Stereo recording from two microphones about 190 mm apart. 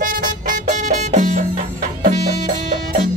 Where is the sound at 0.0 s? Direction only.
45° right (ahead or behind).